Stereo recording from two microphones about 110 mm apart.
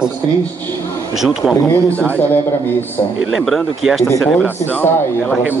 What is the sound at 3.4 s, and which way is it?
Speech, centre (ahead or behind).